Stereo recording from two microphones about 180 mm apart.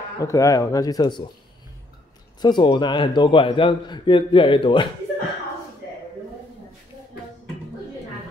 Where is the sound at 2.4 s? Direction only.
25° left (ahead or behind).